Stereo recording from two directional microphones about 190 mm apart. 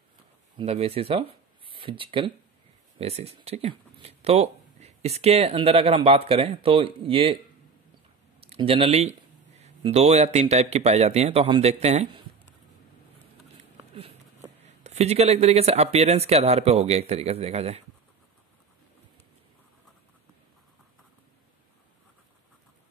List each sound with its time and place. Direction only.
0.6 s speech: 30° right (ahead or behind)
8.4 s speech: 30° right (ahead or behind)
14.6 s speech: 35° right (ahead or behind)